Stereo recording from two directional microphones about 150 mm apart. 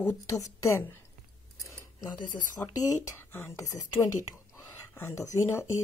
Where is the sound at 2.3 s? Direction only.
60° left (ahead or behind).